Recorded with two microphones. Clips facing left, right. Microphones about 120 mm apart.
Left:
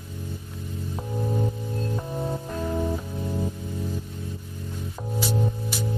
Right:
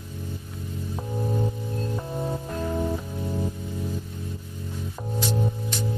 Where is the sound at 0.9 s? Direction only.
Centre (ahead or behind).